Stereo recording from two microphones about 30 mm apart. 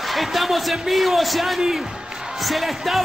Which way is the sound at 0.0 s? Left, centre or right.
Centre.